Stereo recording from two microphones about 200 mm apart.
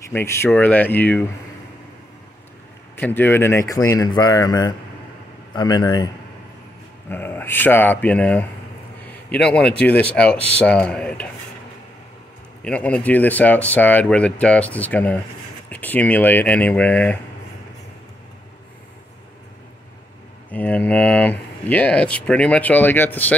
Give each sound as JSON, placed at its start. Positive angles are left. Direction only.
{"t": 0.1, "sound": "speech", "side_deg": 10}
{"t": 3.0, "sound": "speech", "side_deg": 10}
{"t": 7.1, "sound": "a man's voice", "side_deg": 10}
{"t": 12.6, "sound": "speech", "side_deg": 5}
{"t": 20.5, "sound": "speech", "side_deg": 5}